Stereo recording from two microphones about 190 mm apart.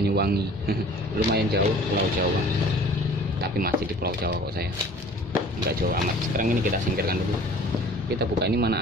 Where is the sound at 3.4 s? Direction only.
55° right (ahead or behind).